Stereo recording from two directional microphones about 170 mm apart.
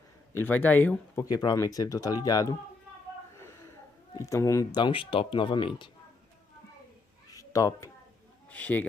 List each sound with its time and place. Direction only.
0.3 s speech: 10° left (ahead or behind)
4.2 s speech: 15° left (ahead or behind)
7.2 s a sound: 20° left (ahead or behind)
8.5 s speech: 10° left (ahead or behind)